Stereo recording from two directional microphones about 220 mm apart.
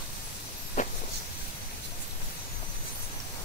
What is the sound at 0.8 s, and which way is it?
Vehicle, 35° left (ahead or behind).